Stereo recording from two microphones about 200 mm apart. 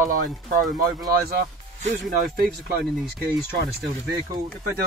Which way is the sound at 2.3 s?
50° right (ahead or behind).